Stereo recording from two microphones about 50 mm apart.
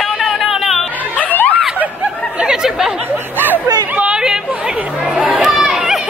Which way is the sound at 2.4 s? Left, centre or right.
Centre.